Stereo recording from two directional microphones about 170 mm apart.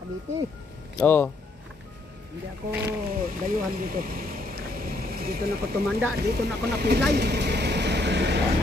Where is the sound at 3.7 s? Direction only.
55° right (ahead or behind).